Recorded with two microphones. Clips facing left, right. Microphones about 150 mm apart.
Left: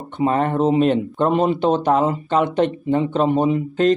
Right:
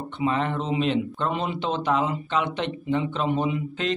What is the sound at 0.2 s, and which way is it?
Speech, 45° left (ahead or behind).